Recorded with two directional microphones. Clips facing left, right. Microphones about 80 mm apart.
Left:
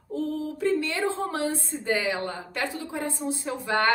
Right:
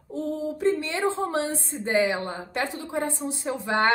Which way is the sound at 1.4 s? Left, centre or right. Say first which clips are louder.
Left 2 dB; right.